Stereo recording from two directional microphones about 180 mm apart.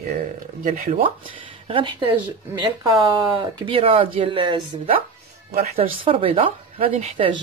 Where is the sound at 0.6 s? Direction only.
50° right (ahead or behind).